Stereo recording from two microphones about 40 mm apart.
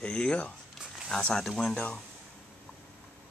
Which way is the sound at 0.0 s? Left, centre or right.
Left.